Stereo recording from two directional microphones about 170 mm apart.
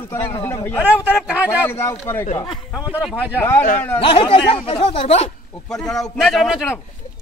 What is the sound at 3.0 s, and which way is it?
Speech, 5° right (ahead or behind).